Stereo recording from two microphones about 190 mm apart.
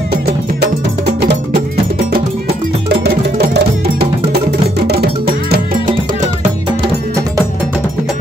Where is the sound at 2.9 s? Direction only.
60° right (ahead or behind).